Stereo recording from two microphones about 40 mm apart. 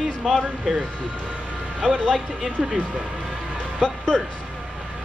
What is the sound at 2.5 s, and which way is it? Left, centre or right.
Speech, right.